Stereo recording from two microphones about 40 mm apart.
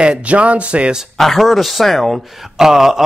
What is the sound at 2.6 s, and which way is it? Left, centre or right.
Speech, centre.